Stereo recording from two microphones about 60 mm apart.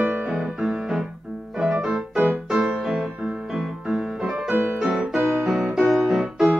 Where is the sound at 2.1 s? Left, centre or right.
Right.